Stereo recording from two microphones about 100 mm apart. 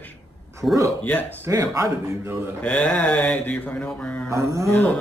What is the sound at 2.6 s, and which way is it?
A man's voice, 10° left (ahead or behind).